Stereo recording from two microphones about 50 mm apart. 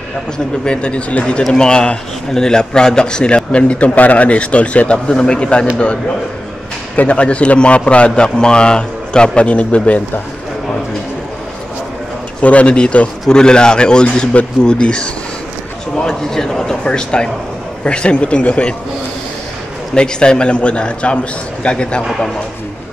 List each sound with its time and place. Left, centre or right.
0.7 s a man's voice: left
7.0 s a man's voice: left
12.4 s a man's voice: left
19.9 s a man's voice: centre